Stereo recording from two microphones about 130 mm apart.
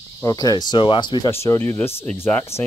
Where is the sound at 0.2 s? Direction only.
30° left (ahead or behind).